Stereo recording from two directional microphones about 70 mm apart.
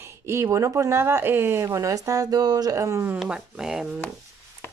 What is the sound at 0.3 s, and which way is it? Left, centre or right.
Speech, right.